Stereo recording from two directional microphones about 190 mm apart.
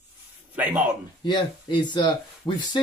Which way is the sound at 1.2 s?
25° left (ahead or behind).